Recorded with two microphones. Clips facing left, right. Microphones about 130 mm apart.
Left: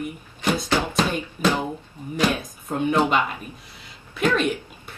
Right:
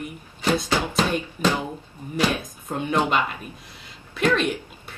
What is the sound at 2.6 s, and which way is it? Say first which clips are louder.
Speech: left 3 dB; 10° left (ahead or behind).